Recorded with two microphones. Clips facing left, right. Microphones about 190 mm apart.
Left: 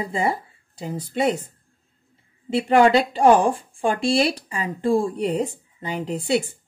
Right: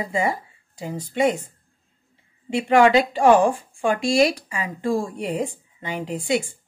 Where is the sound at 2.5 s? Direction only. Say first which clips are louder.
Even; 35° left (ahead or behind).